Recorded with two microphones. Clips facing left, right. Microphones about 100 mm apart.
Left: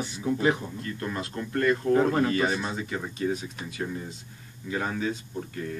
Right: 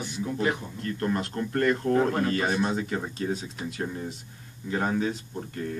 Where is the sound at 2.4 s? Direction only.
50° right (ahead or behind).